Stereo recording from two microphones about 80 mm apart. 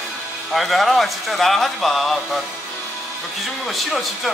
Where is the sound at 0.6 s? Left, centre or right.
Centre.